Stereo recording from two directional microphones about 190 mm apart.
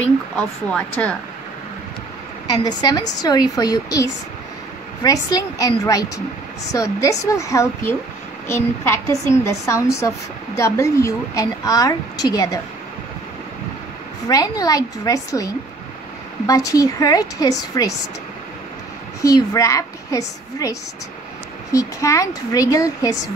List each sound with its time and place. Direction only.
0.4 s speech: 5° left (ahead or behind)
2.8 s a woman's voice: 20° left (ahead or behind)
5.0 s a woman's voice: 20° left (ahead or behind)
14.2 s a woman's voice: 20° left (ahead or behind)
19.2 s a woman's voice: 20° left (ahead or behind)
21.7 s a woman's voice: 15° left (ahead or behind)